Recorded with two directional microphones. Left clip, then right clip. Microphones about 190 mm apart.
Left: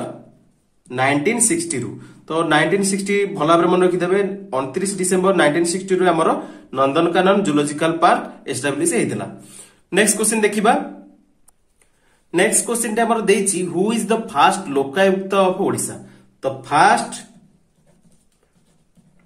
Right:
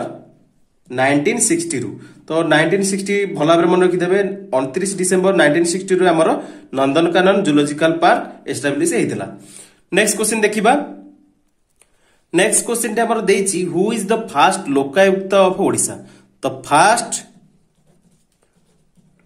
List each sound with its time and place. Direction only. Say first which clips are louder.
0.8 s a man's voice: right 2 dB; 15° right (ahead or behind)
12.3 s a man's voice: right 2 dB; 20° right (ahead or behind)